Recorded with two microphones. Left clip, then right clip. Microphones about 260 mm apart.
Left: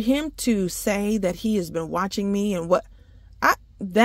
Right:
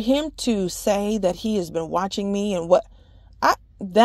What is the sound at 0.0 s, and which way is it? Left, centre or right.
A woman's voice, left.